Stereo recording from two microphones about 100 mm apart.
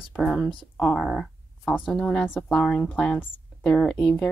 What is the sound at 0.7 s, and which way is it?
Speech, 15° left (ahead or behind).